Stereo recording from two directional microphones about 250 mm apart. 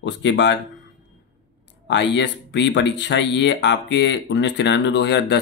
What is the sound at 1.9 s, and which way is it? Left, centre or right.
Speech, left.